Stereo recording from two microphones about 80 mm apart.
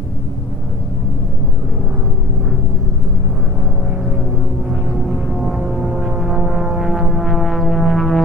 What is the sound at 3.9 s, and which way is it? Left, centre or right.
Music, centre.